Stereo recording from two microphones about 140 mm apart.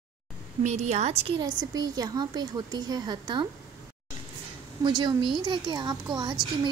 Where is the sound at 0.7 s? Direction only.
55° right (ahead or behind).